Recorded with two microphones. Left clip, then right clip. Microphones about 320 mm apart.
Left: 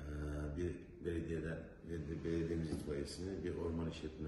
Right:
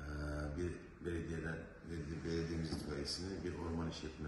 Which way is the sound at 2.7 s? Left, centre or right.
Centre.